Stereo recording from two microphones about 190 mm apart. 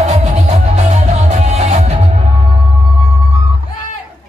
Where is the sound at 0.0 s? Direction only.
35° right (ahead or behind).